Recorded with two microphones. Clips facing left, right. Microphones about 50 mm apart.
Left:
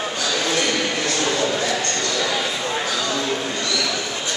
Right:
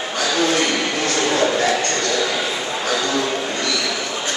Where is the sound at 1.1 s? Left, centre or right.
Right.